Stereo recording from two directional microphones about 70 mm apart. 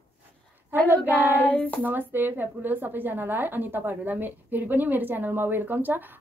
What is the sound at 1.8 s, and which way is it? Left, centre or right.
Speech, right.